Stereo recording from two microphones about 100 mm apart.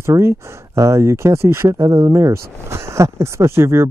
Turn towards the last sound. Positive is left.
turn(degrees=-25)  # may be behind; listen again after turning